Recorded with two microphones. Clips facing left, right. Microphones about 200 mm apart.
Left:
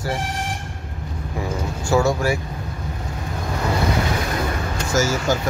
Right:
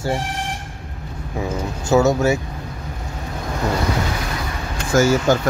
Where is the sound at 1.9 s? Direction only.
20° right (ahead or behind).